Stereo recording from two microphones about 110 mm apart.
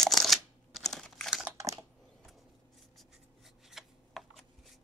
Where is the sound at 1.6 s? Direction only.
30° right (ahead or behind).